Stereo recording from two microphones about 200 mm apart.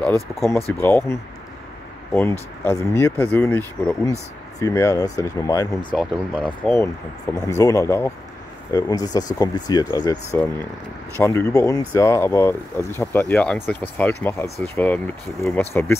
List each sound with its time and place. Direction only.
0.7 s speech: 10° left (ahead or behind)
2.6 s speech: 15° left (ahead or behind)
5.9 s speech: 5° left (ahead or behind)